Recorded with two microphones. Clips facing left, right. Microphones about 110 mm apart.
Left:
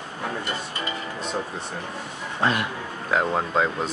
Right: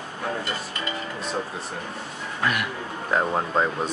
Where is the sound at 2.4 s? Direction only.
25° left (ahead or behind).